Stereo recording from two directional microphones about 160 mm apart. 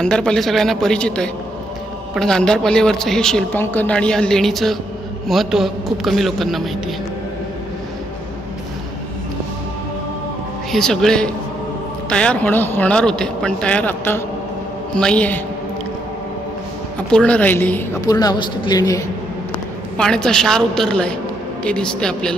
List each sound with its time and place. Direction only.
0.0 s a woman's voice: 5° left (ahead or behind)
10.7 s a woman's voice: 5° left (ahead or behind)
17.1 s speech: 10° left (ahead or behind)
18.0 s a man's voice: 25° left (ahead or behind)
20.0 s a woman's voice: 5° left (ahead or behind)